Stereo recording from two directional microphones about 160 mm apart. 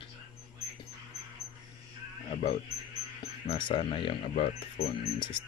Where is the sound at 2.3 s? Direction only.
40° left (ahead or behind).